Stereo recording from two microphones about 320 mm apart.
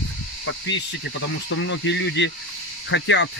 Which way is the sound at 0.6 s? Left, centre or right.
Left.